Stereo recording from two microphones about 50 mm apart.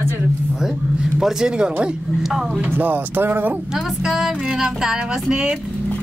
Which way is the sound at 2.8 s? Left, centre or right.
Right.